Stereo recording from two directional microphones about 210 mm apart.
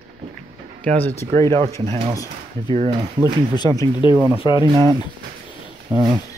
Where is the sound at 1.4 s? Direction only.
20° right (ahead or behind).